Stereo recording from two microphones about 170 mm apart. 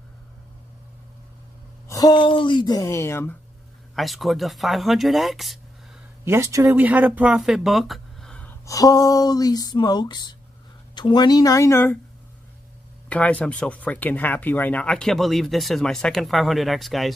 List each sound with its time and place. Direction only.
1.9 s speech: 20° left (ahead or behind)
3.9 s speech: centre (ahead or behind)
6.2 s speech: 15° right (ahead or behind); by 8.5 s 5° left (ahead or behind)
8.6 s speech: 20° left (ahead or behind)
13.1 s speech: 10° left (ahead or behind)